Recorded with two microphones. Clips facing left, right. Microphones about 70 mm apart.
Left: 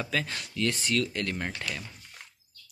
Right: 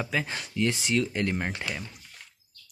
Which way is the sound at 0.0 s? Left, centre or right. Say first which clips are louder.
Right 1 dB; centre.